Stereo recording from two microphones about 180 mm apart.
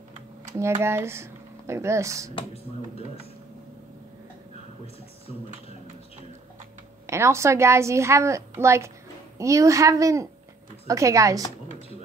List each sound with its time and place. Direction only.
0.5 s speech: 15° right (ahead or behind)
2.3 s speech: 35° left (ahead or behind)
7.1 s a woman's voice: 15° right (ahead or behind)